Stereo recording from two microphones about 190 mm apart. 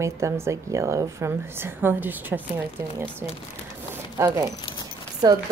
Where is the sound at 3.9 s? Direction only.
15° right (ahead or behind).